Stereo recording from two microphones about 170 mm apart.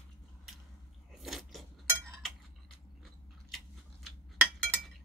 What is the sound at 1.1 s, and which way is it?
Biting, centre (ahead or behind).